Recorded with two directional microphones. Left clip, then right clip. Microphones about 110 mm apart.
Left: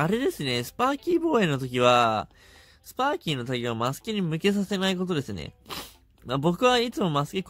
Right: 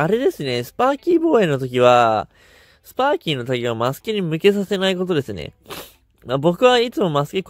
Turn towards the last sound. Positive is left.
turn(degrees=-45)  # may be behind; listen again after turning